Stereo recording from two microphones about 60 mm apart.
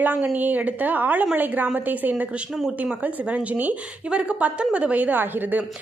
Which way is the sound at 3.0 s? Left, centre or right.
Right.